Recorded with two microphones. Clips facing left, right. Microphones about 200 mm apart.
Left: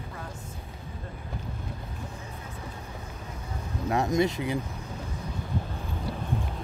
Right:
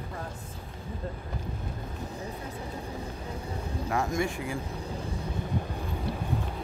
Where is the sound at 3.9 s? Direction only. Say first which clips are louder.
Left 5 dB; 20° left (ahead or behind).